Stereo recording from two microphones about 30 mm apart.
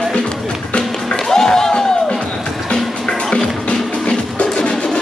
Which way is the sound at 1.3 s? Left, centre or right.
Centre.